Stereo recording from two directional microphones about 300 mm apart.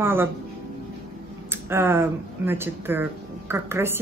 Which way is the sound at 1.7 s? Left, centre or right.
Centre.